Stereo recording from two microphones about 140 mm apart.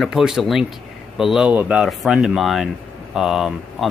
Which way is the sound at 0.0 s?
5° right (ahead or behind).